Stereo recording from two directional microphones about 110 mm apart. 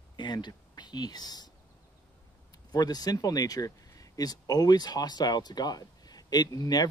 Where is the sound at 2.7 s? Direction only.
35° left (ahead or behind).